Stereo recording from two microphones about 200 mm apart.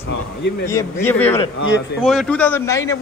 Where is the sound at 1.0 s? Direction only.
10° left (ahead or behind).